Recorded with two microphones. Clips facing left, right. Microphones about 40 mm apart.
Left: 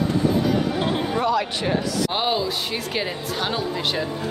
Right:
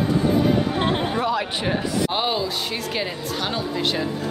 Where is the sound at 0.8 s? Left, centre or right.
Right.